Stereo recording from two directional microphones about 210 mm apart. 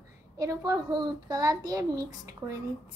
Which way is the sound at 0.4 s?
15° right (ahead or behind).